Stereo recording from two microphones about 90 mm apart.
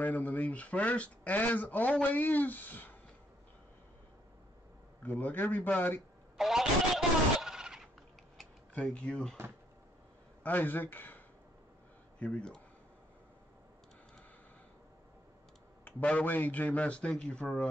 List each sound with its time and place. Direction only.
0.0 s speech: 20° left (ahead or behind)
5.0 s speech: 20° left (ahead or behind)
6.3 s a sound: 5° right (ahead or behind)
8.7 s a man's voice: 10° left (ahead or behind)
10.4 s a man's voice: 20° left (ahead or behind)
15.8 s a man's voice: 15° left (ahead or behind)